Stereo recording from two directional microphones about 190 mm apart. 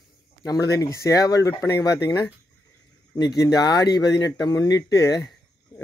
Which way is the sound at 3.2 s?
20° left (ahead or behind).